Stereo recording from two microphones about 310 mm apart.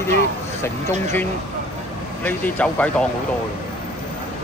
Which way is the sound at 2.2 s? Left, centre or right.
Centre.